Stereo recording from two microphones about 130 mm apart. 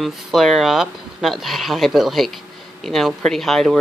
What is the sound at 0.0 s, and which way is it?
Speech, centre (ahead or behind).